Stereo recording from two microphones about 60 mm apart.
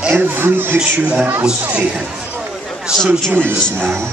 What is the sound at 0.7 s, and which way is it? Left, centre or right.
Speech, centre.